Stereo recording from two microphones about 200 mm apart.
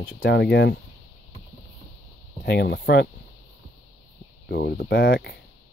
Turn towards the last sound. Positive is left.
turn(degrees=55)  # may be behind; listen again after turning